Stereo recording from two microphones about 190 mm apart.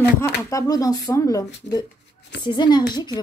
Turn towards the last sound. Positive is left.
turn(degrees=20)  # may be behind; listen again after turning